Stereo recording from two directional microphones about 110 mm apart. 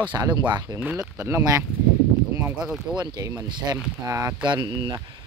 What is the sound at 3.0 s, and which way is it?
Speech, 40° right (ahead or behind).